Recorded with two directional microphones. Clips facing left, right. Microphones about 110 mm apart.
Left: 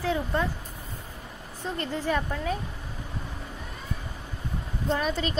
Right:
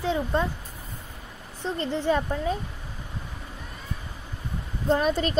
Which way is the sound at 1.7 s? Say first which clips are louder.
Right 3 dB; 25° right (ahead or behind).